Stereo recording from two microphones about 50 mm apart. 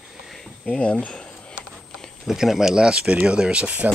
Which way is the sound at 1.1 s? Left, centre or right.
Centre.